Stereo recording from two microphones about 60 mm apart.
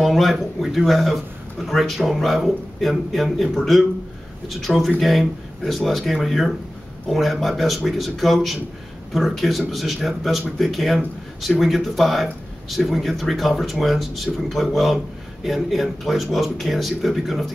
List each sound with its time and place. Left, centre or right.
0.0 s speech: centre